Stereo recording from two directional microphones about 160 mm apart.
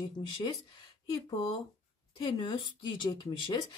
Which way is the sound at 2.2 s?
30° left (ahead or behind).